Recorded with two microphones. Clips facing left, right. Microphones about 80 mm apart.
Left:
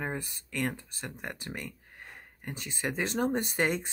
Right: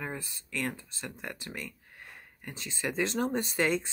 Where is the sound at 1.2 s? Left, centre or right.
Left.